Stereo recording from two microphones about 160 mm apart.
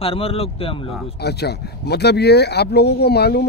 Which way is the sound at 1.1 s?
90° left.